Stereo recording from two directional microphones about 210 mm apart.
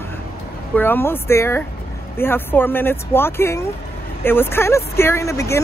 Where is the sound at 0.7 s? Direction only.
10° left (ahead or behind).